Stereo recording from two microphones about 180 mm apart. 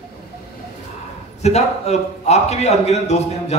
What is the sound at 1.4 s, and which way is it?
A man's voice, 35° left (ahead or behind).